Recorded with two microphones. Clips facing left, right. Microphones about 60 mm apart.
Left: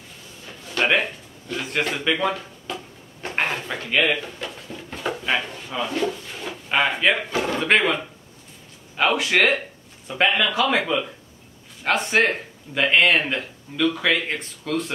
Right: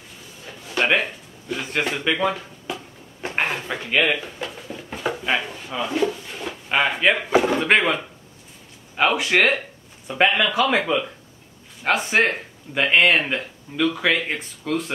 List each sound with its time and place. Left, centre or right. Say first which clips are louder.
0.5 s a sound: even; centre
2.7 s drawer open or close: right 1 dB; centre
7.2 s speech: right 6 dB; centre
7.5 s speech: right 1 dB; centre